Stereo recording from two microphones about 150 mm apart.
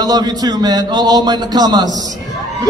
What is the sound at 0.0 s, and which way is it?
A woman's voice, 30° right (ahead or behind).